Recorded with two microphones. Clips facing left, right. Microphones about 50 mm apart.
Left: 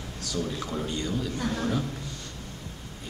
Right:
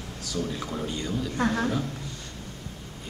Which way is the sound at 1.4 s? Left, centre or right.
Right.